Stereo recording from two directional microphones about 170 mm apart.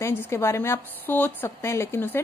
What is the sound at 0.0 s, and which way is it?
A woman's voice, 15° left (ahead or behind).